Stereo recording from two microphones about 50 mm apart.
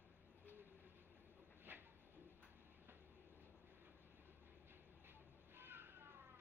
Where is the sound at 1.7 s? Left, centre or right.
Right.